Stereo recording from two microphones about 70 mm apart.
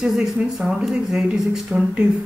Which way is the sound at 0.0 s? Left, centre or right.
Centre.